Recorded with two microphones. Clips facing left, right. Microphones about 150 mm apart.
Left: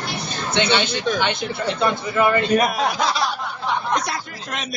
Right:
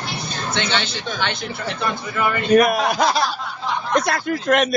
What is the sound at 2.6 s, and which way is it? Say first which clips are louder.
Speech: right 4 dB; 55° right (ahead or behind).